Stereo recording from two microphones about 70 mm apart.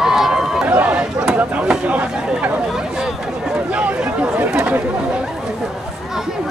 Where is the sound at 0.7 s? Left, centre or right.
Right.